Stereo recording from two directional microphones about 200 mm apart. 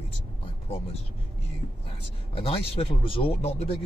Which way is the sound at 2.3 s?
30° left (ahead or behind).